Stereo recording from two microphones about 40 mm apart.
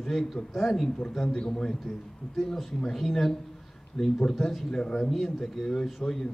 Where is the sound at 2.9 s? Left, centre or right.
Centre.